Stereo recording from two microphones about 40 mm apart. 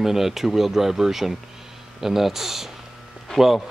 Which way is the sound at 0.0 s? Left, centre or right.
Centre.